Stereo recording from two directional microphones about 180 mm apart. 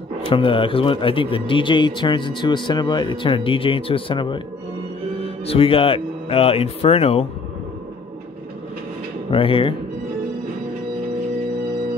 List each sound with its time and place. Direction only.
0.3 s speech: 30° left (ahead or behind)
9.3 s speech: 30° left (ahead or behind)